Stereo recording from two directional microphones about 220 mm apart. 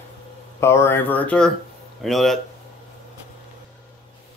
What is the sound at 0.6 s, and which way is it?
Speech, 10° left (ahead or behind).